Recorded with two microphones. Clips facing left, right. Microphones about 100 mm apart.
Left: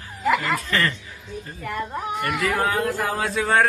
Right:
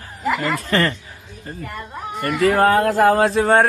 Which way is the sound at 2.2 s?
40° right (ahead or behind).